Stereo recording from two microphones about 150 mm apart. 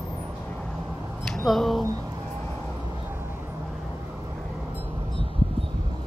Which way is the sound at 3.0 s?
15° right (ahead or behind).